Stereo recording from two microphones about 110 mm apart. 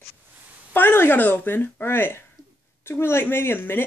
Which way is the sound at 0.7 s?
20° left (ahead or behind).